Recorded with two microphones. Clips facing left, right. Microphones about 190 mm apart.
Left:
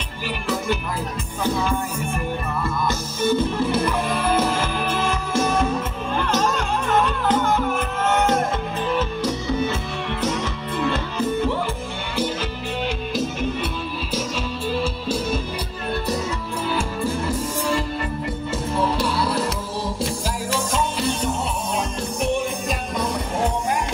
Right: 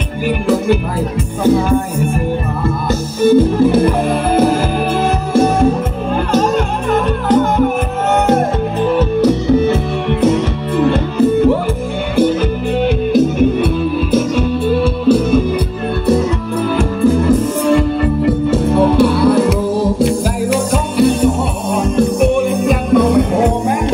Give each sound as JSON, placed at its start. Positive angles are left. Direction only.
{"t": 1.4, "sound": "music", "side_deg": -45}
{"t": 16.7, "sound": "music", "side_deg": -55}